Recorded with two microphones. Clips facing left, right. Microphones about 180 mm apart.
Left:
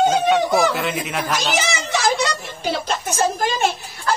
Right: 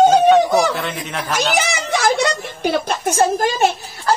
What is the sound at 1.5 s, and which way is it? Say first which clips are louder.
Speech: right 2 dB; 55° right (ahead or behind).